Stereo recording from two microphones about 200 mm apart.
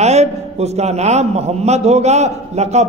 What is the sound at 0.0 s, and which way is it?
A man's voice, 35° right (ahead or behind).